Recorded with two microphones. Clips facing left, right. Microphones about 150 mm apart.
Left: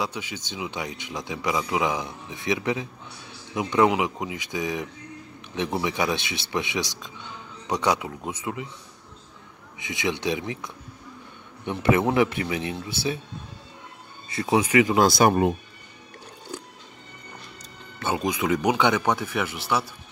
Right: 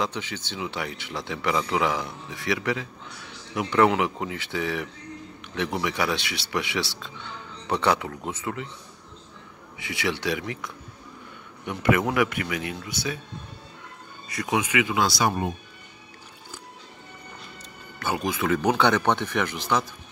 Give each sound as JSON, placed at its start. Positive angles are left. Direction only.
{"t": 0.0, "sound": "speech", "side_deg": 10}
{"t": 9.8, "sound": "a man's voice", "side_deg": 20}
{"t": 14.3, "sound": "speech", "side_deg": 30}
{"t": 17.9, "sound": "speech", "side_deg": 25}